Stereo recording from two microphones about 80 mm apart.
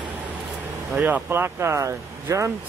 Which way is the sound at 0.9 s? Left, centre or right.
Right.